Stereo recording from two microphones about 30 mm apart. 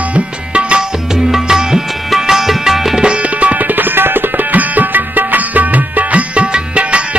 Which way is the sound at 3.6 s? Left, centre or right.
Right.